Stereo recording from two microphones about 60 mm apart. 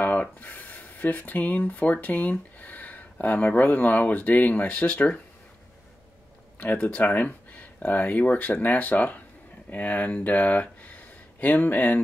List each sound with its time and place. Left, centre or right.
0.0 s speech: left
6.6 s speech: left